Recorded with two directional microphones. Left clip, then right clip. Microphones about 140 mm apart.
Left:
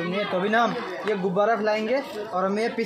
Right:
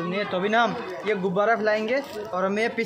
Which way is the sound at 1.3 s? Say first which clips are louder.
Even; 25° right (ahead or behind).